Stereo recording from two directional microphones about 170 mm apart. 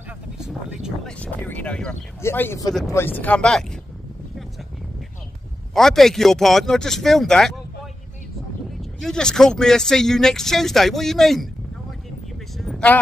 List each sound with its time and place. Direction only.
0.4 s speech: 5° right (ahead or behind)
1.2 s speech: 10° left (ahead or behind)
5.8 s speech: centre (ahead or behind)
9.0 s speech: 5° left (ahead or behind)
12.5 s a sound: centre (ahead or behind)